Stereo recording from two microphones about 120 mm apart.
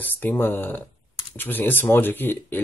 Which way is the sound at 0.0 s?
15° left (ahead or behind).